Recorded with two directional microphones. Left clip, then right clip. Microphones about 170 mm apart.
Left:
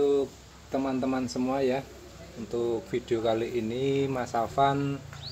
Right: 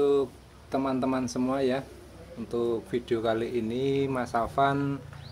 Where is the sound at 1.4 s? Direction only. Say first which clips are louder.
Left 1 dB; 15° right (ahead or behind).